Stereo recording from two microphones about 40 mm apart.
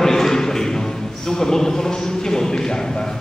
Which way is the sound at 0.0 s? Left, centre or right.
Centre.